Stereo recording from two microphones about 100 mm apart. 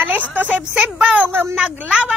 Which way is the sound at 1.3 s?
20° right (ahead or behind).